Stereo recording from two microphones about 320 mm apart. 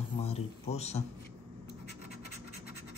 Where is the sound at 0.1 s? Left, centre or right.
Centre.